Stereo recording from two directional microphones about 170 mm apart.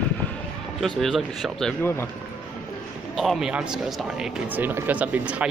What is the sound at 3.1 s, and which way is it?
Speech, centre (ahead or behind).